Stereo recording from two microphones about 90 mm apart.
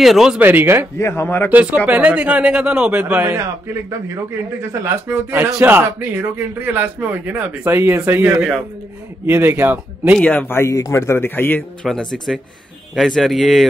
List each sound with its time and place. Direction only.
0.0 s speech: 5° right (ahead or behind)
0.4 s speech: 20° right (ahead or behind)
0.9 s a man's voice: 30° left (ahead or behind)
1.5 s a man's voice: 15° right (ahead or behind)
3.3 s speech: 30° right (ahead or behind)
8.4 s speech: 5° right (ahead or behind)
9.2 s speech: 25° right (ahead or behind)
10.2 s a man's voice: 20° left (ahead or behind)
11.8 s speech: 5° left (ahead or behind)